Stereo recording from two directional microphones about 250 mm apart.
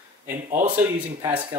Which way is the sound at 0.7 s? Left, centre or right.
Centre.